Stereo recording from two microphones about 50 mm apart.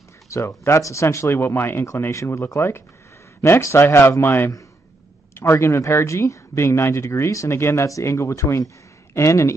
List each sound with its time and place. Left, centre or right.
0.3 s speech: left
1.3 s speech: left
1.9 s speech: left
5.3 s speech: left